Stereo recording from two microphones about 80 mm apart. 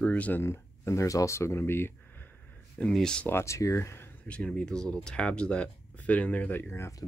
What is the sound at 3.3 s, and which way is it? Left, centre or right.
Speech, left.